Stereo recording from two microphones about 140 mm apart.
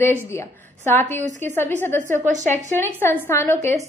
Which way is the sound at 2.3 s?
60° right (ahead or behind).